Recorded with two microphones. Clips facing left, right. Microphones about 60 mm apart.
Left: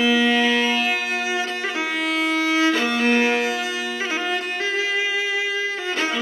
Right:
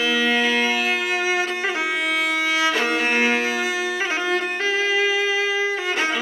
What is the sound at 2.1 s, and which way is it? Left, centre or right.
Violin, centre.